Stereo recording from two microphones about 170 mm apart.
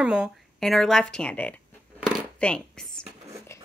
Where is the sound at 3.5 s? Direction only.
15° left (ahead or behind).